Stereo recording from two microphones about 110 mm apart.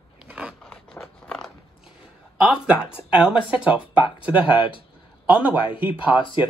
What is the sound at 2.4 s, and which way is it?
Speech, 10° right (ahead or behind).